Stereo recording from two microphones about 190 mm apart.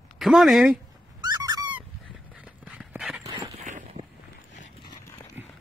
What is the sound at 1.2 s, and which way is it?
Fowl, 20° right (ahead or behind).